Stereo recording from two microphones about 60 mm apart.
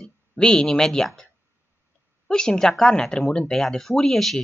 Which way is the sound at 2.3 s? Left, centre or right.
Centre.